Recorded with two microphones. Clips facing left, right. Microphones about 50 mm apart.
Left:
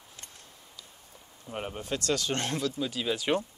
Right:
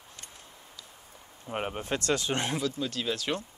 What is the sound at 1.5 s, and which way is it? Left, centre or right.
Speech, right.